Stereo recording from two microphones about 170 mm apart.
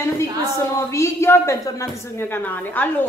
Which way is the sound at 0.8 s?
15° left (ahead or behind).